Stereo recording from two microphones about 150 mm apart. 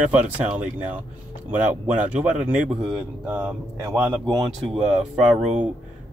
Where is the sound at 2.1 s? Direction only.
5° right (ahead or behind).